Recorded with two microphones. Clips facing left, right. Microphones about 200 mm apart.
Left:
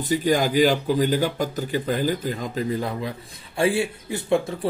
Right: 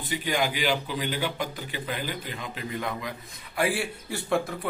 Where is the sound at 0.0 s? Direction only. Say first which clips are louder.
Left 7 dB; 45° left (ahead or behind); by 4.6 s 20° left (ahead or behind).